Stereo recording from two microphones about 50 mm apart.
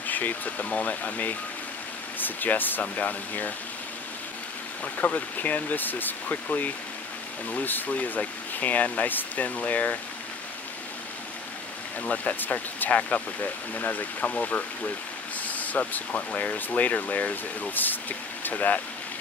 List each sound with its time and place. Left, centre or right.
0.0 s speech: left
4.8 s speech: left
12.0 s speech: left